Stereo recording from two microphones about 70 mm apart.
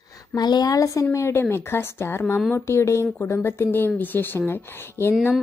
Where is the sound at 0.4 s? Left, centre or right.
Left.